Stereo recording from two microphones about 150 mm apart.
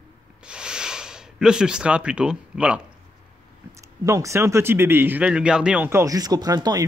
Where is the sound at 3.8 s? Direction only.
20° right (ahead or behind).